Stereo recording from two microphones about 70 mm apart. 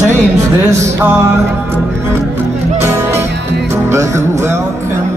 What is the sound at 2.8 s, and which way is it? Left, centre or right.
Music, right.